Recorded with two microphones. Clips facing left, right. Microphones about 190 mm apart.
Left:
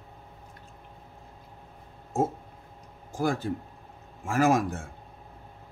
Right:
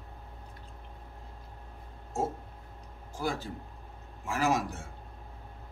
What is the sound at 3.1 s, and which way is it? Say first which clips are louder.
Speech: left 6 dB; 50° left (ahead or behind).